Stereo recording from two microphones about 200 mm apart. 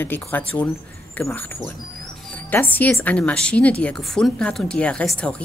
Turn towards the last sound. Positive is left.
turn(degrees=5)  # may be behind; listen again after turning